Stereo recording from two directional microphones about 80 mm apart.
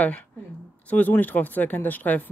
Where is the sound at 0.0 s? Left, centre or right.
Centre.